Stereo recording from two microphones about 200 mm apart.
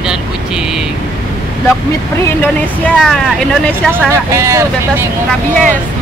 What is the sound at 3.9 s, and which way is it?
Speech, 15° right (ahead or behind).